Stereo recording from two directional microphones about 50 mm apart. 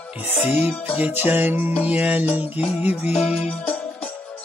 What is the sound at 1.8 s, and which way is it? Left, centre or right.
Music, right.